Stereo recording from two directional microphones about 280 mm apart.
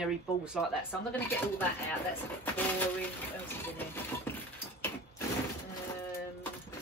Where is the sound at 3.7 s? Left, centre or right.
Centre.